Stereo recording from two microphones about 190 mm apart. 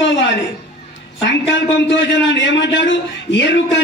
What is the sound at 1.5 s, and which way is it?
A man's voice, 70° left (ahead or behind).